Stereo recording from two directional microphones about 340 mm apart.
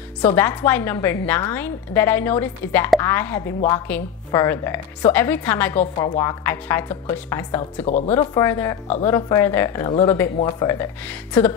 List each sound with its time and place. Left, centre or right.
0.2 s a woman's voice: centre
7.8 s speech: centre
8.1 s a woman's voice: centre